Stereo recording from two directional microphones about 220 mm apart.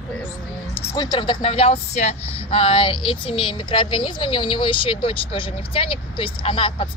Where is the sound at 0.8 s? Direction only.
20° left (ahead or behind).